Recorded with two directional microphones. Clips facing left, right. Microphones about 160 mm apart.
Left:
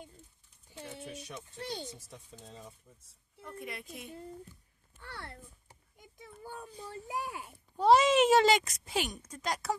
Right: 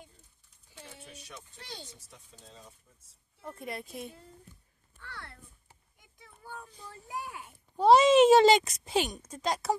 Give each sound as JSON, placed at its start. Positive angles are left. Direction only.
{"t": 3.4, "sound": "a woman's voice", "side_deg": -35}
{"t": 7.1, "sound": "speech", "side_deg": 10}
{"t": 7.7, "sound": "speech", "side_deg": -20}